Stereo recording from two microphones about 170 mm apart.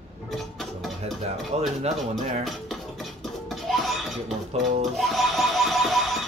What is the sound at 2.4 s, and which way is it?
Music, centre (ahead or behind).